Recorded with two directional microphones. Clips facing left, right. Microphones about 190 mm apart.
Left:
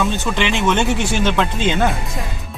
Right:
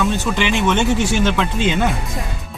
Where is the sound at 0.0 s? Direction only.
Centre (ahead or behind).